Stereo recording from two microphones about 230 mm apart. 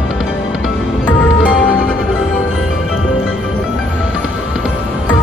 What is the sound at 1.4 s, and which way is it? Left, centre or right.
Music, centre.